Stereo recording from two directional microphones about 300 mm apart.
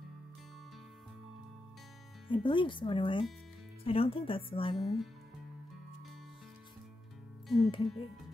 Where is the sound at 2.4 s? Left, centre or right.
Centre.